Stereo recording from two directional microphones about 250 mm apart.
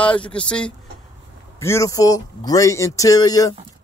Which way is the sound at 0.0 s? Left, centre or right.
Centre.